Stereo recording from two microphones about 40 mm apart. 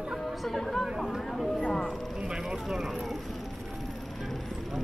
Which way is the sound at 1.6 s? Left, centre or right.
Centre.